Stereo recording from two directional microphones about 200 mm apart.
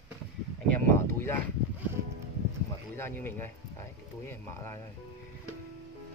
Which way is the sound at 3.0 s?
10° left (ahead or behind).